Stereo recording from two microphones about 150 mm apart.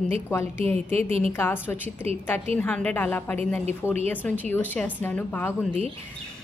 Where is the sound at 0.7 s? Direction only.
45° right (ahead or behind).